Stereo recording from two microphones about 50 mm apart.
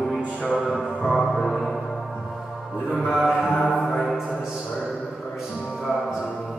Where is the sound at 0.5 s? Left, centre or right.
Centre.